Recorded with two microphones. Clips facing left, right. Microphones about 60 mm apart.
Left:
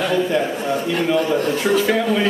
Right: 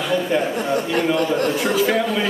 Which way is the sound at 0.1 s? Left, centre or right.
Centre.